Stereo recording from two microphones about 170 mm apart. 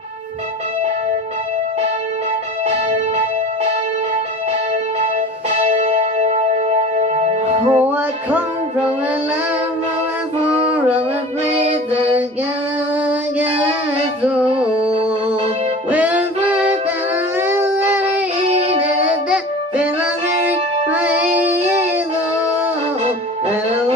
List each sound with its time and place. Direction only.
2.7 s music: 35° right (ahead or behind)
5.0 s music: 40° right (ahead or behind)
7.8 s music: 10° right (ahead or behind)
10.4 s a sound: 10° right (ahead or behind)
11.6 s music: 40° right (ahead or behind)
14.6 s music: 5° right (ahead or behind)
15.9 s music: 10° right (ahead or behind)
17.4 s a sound: 15° right (ahead or behind)
18.4 s music: 35° right (ahead or behind)
20.4 s music: 10° right (ahead or behind)